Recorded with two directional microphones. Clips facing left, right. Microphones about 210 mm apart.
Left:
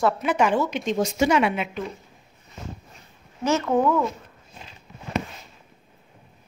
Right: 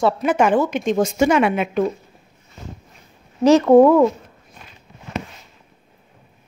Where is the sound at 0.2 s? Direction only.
50° right (ahead or behind).